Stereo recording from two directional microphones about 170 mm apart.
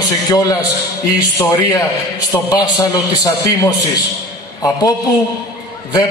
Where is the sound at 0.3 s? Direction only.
20° left (ahead or behind).